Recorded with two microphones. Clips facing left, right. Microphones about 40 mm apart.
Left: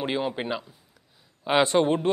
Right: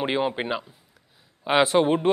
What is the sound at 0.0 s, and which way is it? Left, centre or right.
Speech, right.